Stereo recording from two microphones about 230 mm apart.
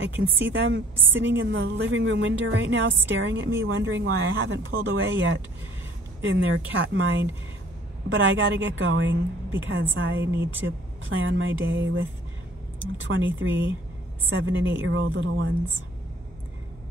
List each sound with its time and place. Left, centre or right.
0.0 s speech: right
10.2 s speech: centre
11.1 s speech: right